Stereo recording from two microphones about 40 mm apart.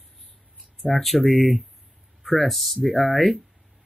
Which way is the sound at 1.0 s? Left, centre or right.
Centre.